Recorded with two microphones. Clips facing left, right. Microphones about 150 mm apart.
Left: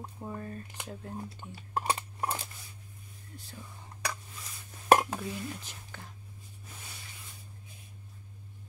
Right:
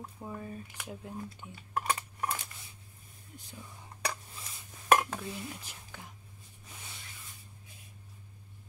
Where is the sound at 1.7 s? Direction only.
30° left (ahead or behind).